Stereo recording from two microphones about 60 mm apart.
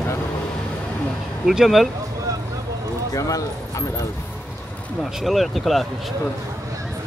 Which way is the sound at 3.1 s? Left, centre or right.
Left.